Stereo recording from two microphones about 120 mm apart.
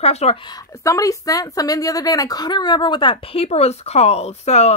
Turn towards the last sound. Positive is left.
turn(degrees=65)  # may be behind; listen again after turning